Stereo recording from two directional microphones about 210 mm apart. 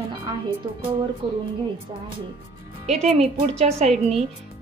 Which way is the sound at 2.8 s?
30° right (ahead or behind).